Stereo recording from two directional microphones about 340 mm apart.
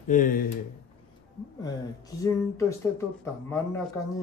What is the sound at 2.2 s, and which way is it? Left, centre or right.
Speech, centre.